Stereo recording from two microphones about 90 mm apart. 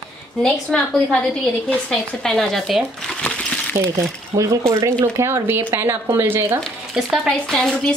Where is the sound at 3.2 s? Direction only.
10° left (ahead or behind).